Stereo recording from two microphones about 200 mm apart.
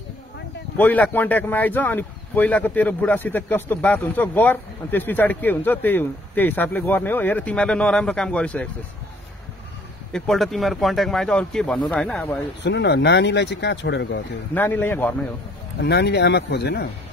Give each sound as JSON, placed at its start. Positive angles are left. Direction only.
{"t": 0.7, "sound": "speech", "side_deg": 10}
{"t": 10.1, "sound": "speech", "side_deg": 0}
{"t": 12.6, "sound": "speech", "side_deg": 55}
{"t": 14.5, "sound": "speech", "side_deg": 10}
{"t": 15.8, "sound": "speech", "side_deg": 55}